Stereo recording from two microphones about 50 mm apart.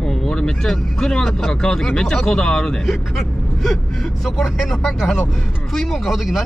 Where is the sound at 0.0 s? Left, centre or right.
Centre.